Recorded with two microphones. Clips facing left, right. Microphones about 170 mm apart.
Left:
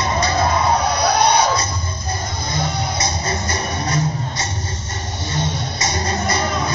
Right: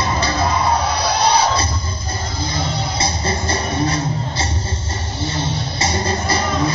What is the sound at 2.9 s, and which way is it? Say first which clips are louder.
Music: right 1 dB; 30° right (ahead or behind).